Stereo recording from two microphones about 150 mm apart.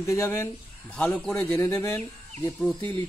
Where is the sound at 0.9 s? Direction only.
5° left (ahead or behind).